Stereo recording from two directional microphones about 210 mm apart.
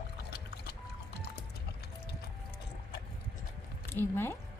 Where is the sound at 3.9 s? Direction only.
10° left (ahead or behind).